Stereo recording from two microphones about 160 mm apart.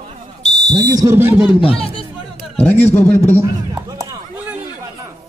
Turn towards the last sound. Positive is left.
turn(degrees=-20)  # may be behind; listen again after turning